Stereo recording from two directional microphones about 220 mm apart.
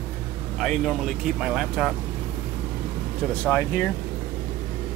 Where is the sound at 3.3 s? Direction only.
5° left (ahead or behind).